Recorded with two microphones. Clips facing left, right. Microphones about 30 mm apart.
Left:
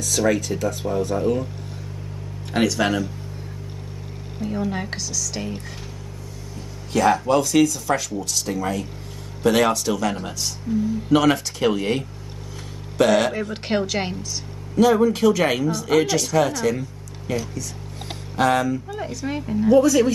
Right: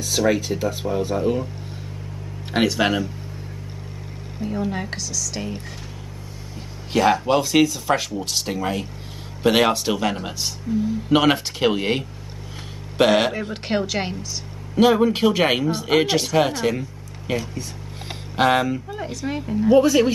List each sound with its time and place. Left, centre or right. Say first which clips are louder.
0.3 s speech: even; right
2.5 s speech: right 1 dB; right
4.5 s speech: even; centre
6.9 s speech: even; centre
10.7 s speech: even; centre
11.1 s speech: even; right
13.3 s speech: left 1 dB; centre
14.8 s speech: even; right
19.2 s speech: even; centre
19.7 s speech: even; right